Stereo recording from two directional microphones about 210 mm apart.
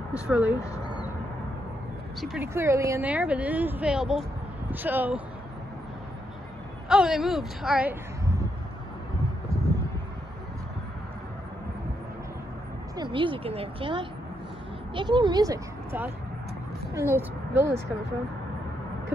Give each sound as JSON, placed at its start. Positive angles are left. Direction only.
{"t": 0.1, "sound": "speech", "side_deg": -5}
{"t": 2.1, "sound": "speech", "side_deg": 0}
{"t": 2.4, "sound": "speech", "side_deg": -15}
{"t": 6.9, "sound": "a woman's voice", "side_deg": 0}
{"t": 12.9, "sound": "speech", "side_deg": -20}